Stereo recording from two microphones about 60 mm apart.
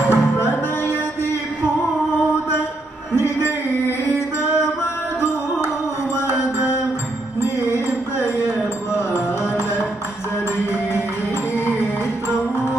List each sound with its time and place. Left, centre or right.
0.1 s music: left
6.1 s music: left
11.5 s music: left